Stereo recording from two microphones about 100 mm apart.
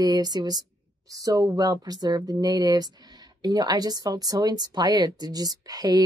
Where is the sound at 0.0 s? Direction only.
45° right (ahead or behind).